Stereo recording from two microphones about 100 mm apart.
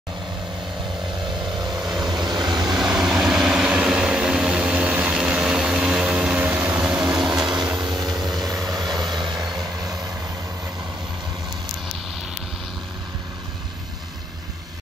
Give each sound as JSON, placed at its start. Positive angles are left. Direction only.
{"t": 2.0, "sound": "vehicle", "side_deg": -45}
{"t": 2.7, "sound": "vehicle", "side_deg": -5}
{"t": 7.8, "sound": "vehicle", "side_deg": -45}